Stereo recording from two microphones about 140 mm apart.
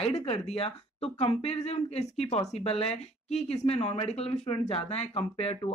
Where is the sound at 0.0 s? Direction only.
50° left (ahead or behind).